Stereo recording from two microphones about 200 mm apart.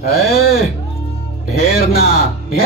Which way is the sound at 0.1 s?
50° left (ahead or behind).